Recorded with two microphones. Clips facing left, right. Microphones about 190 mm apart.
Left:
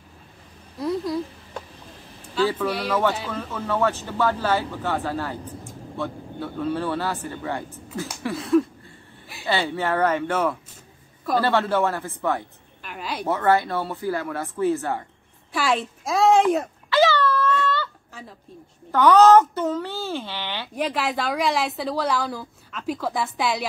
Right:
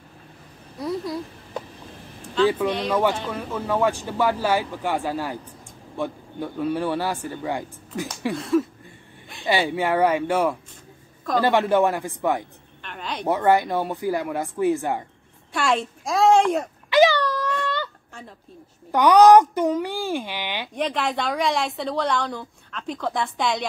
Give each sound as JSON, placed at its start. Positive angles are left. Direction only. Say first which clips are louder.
{"t": 0.7, "sound": "speech", "louder": "left 2 dB", "side_deg": 0}
{"t": 2.4, "sound": "a woman's voice", "louder": "right 3 dB", "side_deg": 5}
{"t": 2.9, "sound": "a man's voice", "louder": "right 1 dB", "side_deg": -10}
{"t": 8.4, "sound": "a woman's voice", "louder": "left 2 dB", "side_deg": 0}
{"t": 9.5, "sound": "a man's voice", "louder": "right 2 dB", "side_deg": -15}
{"t": 12.8, "sound": "a woman's voice", "louder": "even", "side_deg": 5}
{"t": 13.3, "sound": "a man's voice", "louder": "right 2 dB", "side_deg": -15}
{"t": 15.5, "sound": "a woman's voice", "louder": "even", "side_deg": 0}
{"t": 16.9, "sound": "a sound", "louder": "right 2 dB", "side_deg": -15}
{"t": 18.9, "sound": "a man's voice", "louder": "right 1 dB", "side_deg": -15}
{"t": 20.7, "sound": "a woman's voice", "louder": "even", "side_deg": 5}